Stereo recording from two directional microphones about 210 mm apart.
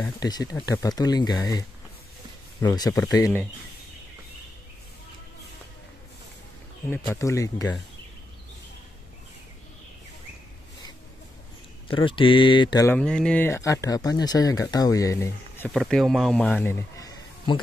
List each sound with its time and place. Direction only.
0.0 s speech: 20° left (ahead or behind)
2.6 s speech: 20° left (ahead or behind)
6.9 s speech: 10° left (ahead or behind)
11.9 s speech: 25° left (ahead or behind)
12.9 s speech: 5° left (ahead or behind)
15.7 s speech: centre (ahead or behind)